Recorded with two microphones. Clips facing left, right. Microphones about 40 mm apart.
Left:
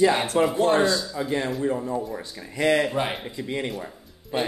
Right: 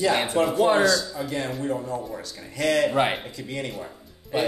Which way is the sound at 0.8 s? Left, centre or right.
Left.